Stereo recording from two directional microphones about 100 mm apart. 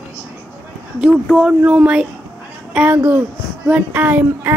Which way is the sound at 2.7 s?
10° right (ahead or behind).